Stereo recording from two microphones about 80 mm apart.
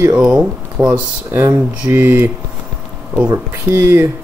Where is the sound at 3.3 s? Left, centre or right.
Right.